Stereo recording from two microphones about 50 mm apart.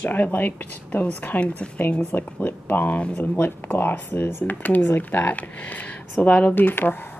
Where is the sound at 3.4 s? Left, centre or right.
Left.